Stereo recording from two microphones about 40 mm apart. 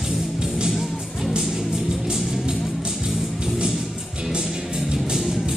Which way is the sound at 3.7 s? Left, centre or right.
Centre.